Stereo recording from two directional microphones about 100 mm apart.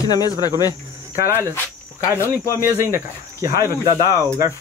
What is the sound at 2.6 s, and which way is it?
Speech, 25° right (ahead or behind).